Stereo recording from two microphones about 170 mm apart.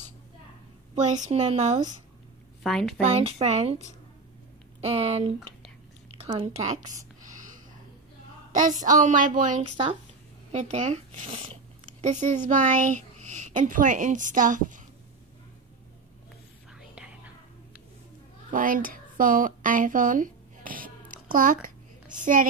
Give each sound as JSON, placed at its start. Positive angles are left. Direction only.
{"t": 1.3, "sound": "speech", "side_deg": -40}
{"t": 2.6, "sound": "a woman's voice", "side_deg": 0}
{"t": 3.0, "sound": "speech", "side_deg": -35}
{"t": 4.8, "sound": "speech", "side_deg": -35}
{"t": 8.5, "sound": "a woman's voice", "side_deg": -50}
{"t": 9.6, "sound": "speech", "side_deg": -30}
{"t": 10.5, "sound": "a woman's voice", "side_deg": -45}
{"t": 16.7, "sound": "whispering", "side_deg": -5}
{"t": 18.5, "sound": "a sound", "side_deg": -55}
{"t": 22.1, "sound": "a woman's voice", "side_deg": -50}